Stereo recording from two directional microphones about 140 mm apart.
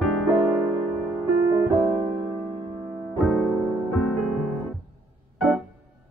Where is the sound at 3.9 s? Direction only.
Centre (ahead or behind).